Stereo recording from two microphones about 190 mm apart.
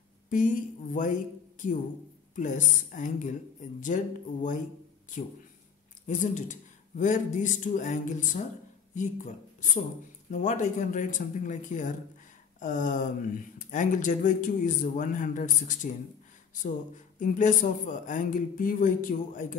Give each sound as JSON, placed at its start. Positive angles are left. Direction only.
{"t": 0.3, "sound": "speech", "side_deg": 45}
{"t": 6.0, "sound": "a man's voice", "side_deg": 40}